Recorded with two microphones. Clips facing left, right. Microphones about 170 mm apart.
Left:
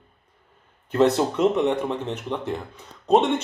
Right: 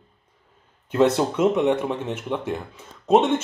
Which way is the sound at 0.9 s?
Centre (ahead or behind).